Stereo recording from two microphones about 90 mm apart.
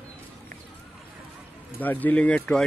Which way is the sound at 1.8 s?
20° left (ahead or behind).